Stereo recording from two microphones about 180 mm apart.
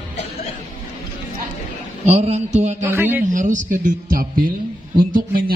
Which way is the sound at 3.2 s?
45° right (ahead or behind).